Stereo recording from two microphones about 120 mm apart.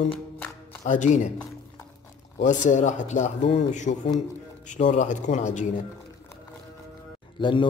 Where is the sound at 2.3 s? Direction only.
90° left.